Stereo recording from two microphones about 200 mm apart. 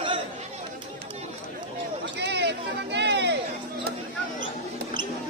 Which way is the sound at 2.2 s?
60° right (ahead or behind).